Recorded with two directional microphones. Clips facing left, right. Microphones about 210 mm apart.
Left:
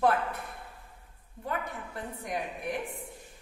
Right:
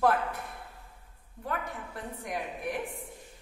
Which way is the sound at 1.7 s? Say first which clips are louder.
Left 1 dB; centre (ahead or behind).